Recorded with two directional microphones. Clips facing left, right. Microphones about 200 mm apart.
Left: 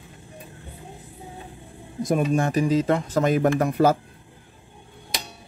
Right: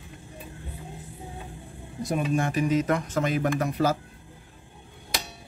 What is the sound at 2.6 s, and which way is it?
Speech, 30° left (ahead or behind).